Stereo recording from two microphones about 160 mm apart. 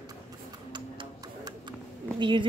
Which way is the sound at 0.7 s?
30° right (ahead or behind).